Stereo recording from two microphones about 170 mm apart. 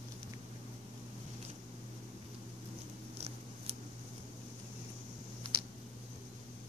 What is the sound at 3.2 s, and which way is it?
Scissors, 40° right (ahead or behind).